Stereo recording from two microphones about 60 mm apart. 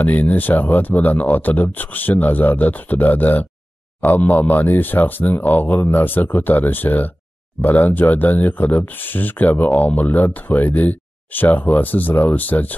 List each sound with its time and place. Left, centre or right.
0.0 s speech: left